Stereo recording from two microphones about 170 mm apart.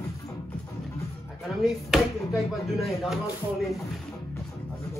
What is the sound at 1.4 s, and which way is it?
Speech, centre (ahead or behind).